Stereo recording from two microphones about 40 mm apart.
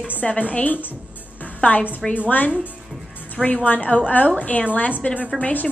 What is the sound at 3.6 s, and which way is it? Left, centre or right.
A woman's voice, left.